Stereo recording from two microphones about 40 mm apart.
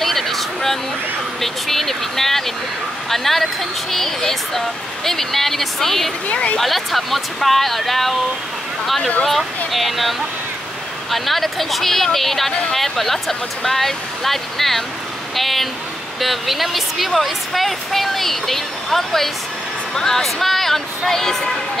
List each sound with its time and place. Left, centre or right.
0.0 s a sound: centre
1.4 s speech: centre
6.3 s speech: left
6.6 s speech: centre